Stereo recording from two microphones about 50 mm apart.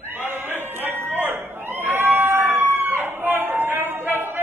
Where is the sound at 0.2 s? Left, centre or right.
Right.